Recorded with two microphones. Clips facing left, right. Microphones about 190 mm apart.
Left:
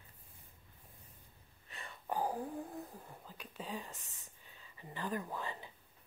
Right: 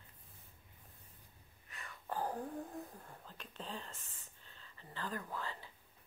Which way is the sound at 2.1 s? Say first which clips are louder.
Left 2 dB; 10° left (ahead or behind).